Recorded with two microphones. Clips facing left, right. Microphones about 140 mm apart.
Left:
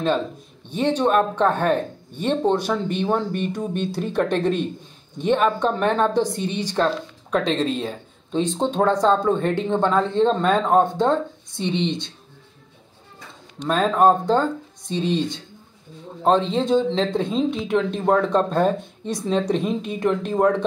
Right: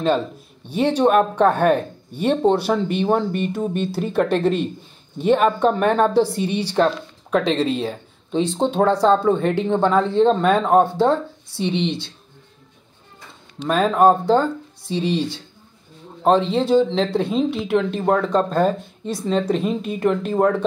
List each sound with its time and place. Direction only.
0.7 s speech: 10° right (ahead or behind)
13.6 s speech: 10° right (ahead or behind)
16.3 s speech: 10° right (ahead or behind)